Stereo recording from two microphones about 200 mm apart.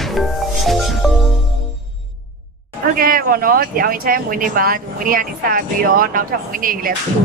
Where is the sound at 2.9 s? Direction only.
45° right (ahead or behind).